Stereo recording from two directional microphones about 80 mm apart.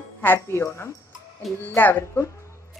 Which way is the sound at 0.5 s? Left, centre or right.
Left.